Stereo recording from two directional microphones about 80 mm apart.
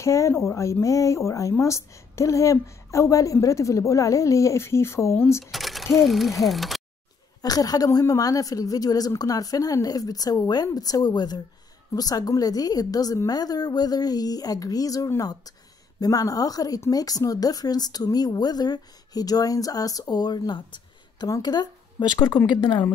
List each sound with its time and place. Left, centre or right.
0.0 s a woman's voice: left
5.4 s a sound: centre
5.9 s speech: centre
7.4 s a woman's voice: left
21.3 s a woman's voice: left
22.5 s speech: left